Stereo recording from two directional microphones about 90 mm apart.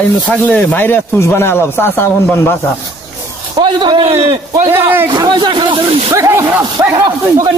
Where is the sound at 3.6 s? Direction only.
65° right (ahead or behind).